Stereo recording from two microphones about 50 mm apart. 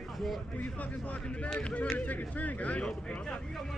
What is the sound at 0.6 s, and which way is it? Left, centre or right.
Speech, left.